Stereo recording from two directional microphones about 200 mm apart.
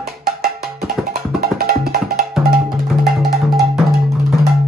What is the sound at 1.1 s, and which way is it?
Music, 50° right (ahead or behind).